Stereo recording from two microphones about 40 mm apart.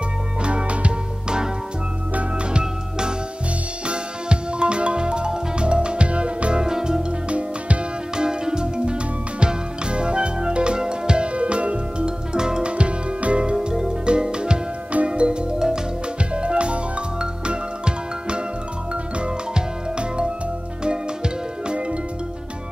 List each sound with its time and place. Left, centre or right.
0.4 s music: right
2.6 s music: centre
6.6 s music: centre
8.2 s music: centre
13.6 s music: centre
21.6 s music: right